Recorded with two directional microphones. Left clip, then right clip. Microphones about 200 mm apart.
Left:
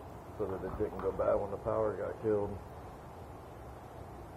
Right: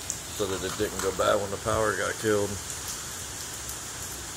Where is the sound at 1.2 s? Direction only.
40° right (ahead or behind).